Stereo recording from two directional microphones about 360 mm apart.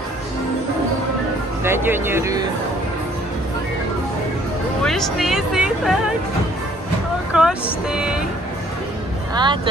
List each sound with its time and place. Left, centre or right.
1.6 s speech: centre
4.8 s speech: centre
7.3 s speech: centre
9.3 s speech: centre